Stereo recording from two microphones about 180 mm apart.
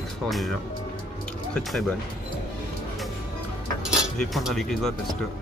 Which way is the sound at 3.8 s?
Centre (ahead or behind).